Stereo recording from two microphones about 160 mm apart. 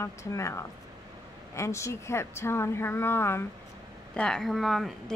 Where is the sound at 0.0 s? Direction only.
20° left (ahead or behind).